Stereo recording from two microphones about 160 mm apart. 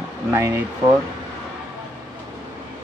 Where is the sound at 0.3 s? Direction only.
15° right (ahead or behind).